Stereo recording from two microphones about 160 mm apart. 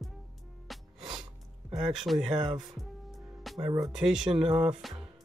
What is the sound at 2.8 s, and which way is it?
Music, centre (ahead or behind).